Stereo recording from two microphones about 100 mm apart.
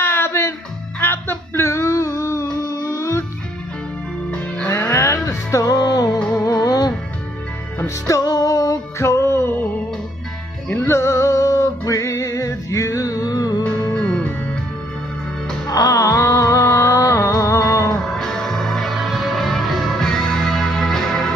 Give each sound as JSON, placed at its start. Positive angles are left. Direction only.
{"t": 0.0, "sound": "music", "side_deg": 25}
{"t": 4.9, "sound": "music", "side_deg": 35}
{"t": 10.8, "sound": "music", "side_deg": 30}
{"t": 13.7, "sound": "music", "side_deg": 10}
{"t": 15.6, "sound": "music", "side_deg": 35}
{"t": 17.9, "sound": "music", "side_deg": 5}